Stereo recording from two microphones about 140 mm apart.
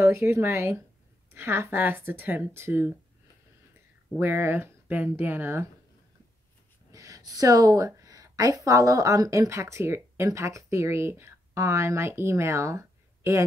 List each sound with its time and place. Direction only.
0.0 s speech: 15° right (ahead or behind)
4.2 s speech: 15° right (ahead or behind)
6.9 s a woman's voice: 25° right (ahead or behind)